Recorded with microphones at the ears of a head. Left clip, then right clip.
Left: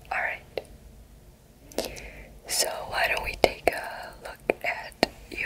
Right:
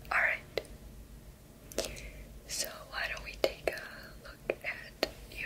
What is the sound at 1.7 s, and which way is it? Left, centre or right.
Whispering, left.